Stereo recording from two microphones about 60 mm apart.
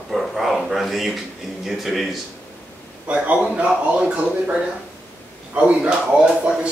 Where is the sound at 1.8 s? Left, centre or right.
Centre.